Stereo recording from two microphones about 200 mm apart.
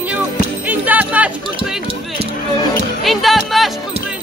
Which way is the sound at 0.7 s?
10° right (ahead or behind).